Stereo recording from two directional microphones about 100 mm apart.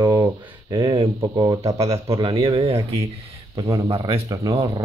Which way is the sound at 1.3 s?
35° right (ahead or behind).